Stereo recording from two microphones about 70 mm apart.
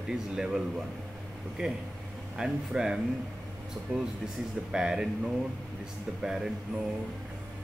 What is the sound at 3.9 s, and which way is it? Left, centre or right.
Speech, right.